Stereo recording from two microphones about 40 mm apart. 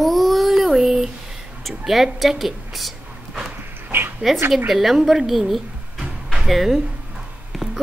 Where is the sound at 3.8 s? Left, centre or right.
Right.